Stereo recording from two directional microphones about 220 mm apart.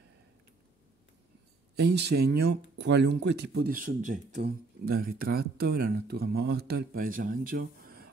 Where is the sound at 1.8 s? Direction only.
50° right (ahead or behind).